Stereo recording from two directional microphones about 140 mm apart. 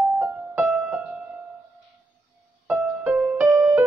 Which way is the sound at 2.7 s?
10° right (ahead or behind).